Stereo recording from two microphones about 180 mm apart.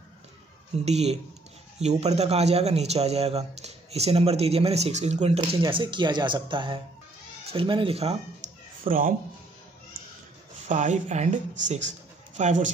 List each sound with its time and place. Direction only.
0.8 s a man's voice: 35° right (ahead or behind)
8.8 s speech: 50° right (ahead or behind)
10.7 s a man's voice: 40° right (ahead or behind)